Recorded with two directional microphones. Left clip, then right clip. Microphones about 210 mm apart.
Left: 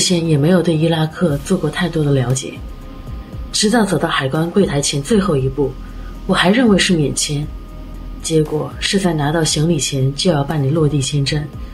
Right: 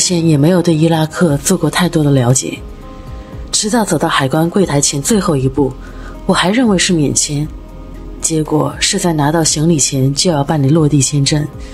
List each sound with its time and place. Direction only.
0.0 s speech: 60° right (ahead or behind)
3.7 s speech: 55° right (ahead or behind)